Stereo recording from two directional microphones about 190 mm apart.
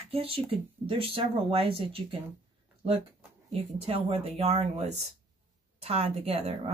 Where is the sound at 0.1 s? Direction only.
30° right (ahead or behind).